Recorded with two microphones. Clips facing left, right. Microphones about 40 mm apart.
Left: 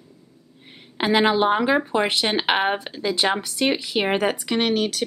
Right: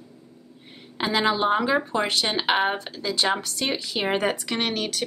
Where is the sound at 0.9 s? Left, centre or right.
Left.